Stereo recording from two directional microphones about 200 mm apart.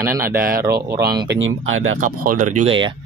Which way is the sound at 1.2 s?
70° right (ahead or behind).